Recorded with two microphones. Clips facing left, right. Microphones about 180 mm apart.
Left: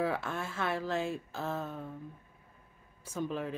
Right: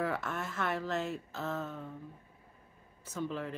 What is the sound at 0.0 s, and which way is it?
Speech, 10° left (ahead or behind).